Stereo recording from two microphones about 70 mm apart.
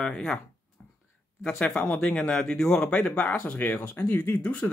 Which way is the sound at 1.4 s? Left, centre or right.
Centre.